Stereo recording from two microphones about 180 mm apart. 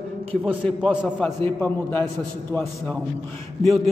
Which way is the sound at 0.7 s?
5° left (ahead or behind).